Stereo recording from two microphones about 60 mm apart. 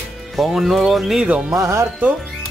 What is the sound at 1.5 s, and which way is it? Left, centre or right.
Speech, right.